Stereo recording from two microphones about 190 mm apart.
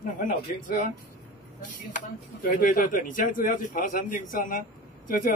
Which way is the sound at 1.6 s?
45° left (ahead or behind).